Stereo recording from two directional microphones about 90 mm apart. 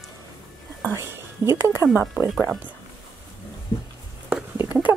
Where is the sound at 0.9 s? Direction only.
30° right (ahead or behind).